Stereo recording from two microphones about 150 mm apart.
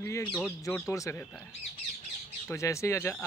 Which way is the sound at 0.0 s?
20° left (ahead or behind).